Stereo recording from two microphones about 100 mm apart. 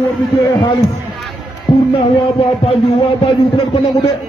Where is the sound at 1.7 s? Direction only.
65° left (ahead or behind).